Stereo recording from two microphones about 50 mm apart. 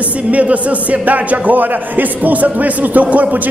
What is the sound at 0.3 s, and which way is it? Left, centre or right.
A man's voice, right.